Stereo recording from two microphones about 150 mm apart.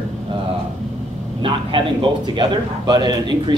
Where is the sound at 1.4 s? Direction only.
35° right (ahead or behind).